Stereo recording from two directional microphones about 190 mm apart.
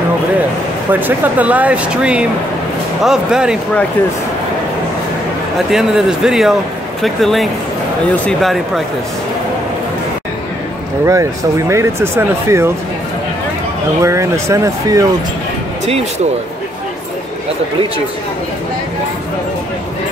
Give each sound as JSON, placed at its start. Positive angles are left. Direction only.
{"t": 0.9, "sound": "speech", "side_deg": -10}
{"t": 5.7, "sound": "speech", "side_deg": 0}
{"t": 11.1, "sound": "speech", "side_deg": -15}
{"t": 14.0, "sound": "speech", "side_deg": -15}